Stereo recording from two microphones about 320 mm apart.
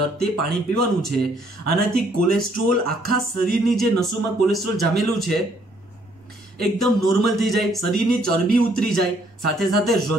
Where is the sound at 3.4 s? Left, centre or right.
Centre.